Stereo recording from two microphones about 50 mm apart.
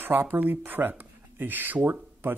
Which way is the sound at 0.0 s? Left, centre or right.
Right.